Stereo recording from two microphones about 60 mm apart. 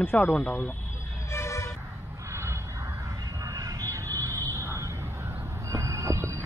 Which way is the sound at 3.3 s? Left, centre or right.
Right.